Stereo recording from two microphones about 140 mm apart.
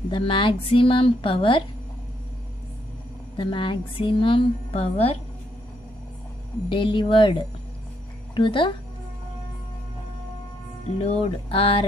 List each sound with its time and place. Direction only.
0.1 s a woman's voice: 35° left (ahead or behind)
3.3 s a woman's voice: 35° left (ahead or behind)
6.7 s a woman's voice: 35° left (ahead or behind)
11.0 s a woman's voice: 45° left (ahead or behind)